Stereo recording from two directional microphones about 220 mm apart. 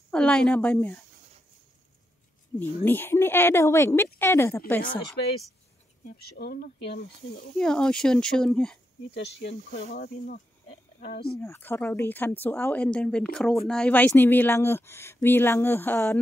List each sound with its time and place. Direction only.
0.1 s speech: 5° left (ahead or behind)
2.6 s speech: 10° left (ahead or behind)
6.0 s speech: 45° left (ahead or behind)
7.5 s speech: 5° left (ahead or behind)
9.1 s speech: 50° left (ahead or behind)
9.8 s speech: 35° left (ahead or behind)
11.3 s speech: 10° left (ahead or behind)